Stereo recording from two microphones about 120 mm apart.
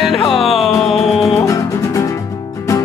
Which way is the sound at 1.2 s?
25° left (ahead or behind).